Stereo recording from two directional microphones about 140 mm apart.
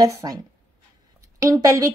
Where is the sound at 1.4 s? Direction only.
25° right (ahead or behind).